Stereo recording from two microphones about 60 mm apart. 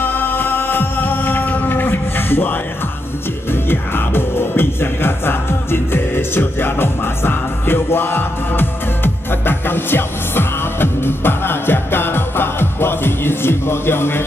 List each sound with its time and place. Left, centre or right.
0.0 s music: left
3.5 s music: left